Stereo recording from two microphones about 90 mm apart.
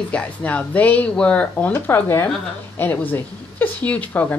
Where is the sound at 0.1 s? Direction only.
15° left (ahead or behind).